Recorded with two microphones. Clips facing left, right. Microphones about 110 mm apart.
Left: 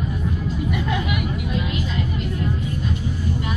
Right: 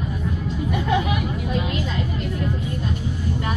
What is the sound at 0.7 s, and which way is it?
Speech, 30° right (ahead or behind).